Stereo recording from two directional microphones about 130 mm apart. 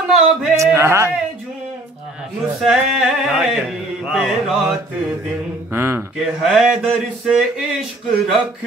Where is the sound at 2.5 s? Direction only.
5° right (ahead or behind).